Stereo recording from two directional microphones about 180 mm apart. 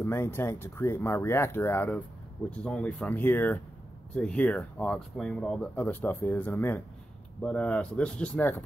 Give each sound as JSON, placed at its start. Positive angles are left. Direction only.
{"t": 0.0, "sound": "speech", "side_deg": 15}